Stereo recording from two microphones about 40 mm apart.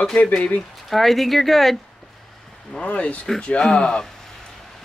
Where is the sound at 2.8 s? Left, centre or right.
Left.